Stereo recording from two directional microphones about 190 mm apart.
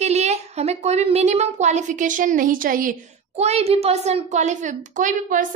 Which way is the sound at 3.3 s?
35° right (ahead or behind).